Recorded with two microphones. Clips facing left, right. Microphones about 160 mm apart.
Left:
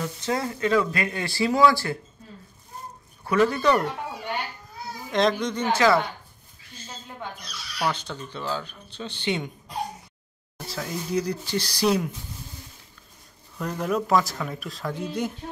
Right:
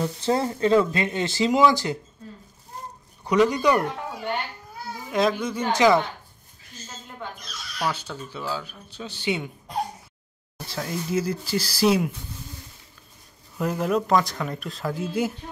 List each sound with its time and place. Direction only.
0.0 s speech: 30° right (ahead or behind)
3.3 s speech: 15° right (ahead or behind)
5.1 s speech: 5° right (ahead or behind)
7.9 s speech: 10° right (ahead or behind)
10.7 s speech: centre (ahead or behind)
13.6 s speech: 5° right (ahead or behind)